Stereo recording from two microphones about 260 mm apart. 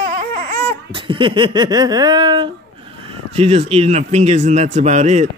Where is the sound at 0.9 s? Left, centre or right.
Centre.